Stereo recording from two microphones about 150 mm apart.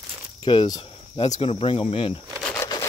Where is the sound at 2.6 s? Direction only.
25° left (ahead or behind).